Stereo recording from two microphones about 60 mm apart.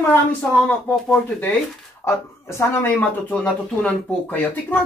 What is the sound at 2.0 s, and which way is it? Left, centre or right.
Speech, left.